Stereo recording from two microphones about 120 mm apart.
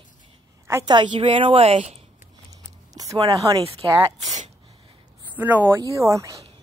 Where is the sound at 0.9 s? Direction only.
40° right (ahead or behind).